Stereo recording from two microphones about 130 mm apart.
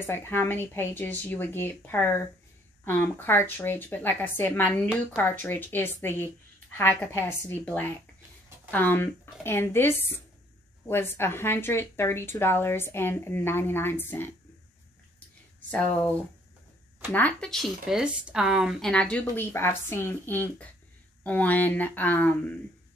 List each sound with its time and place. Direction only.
0.0 s speech: 15° left (ahead or behind)
15.7 s speech: 10° left (ahead or behind)
17.1 s speech: 10° left (ahead or behind)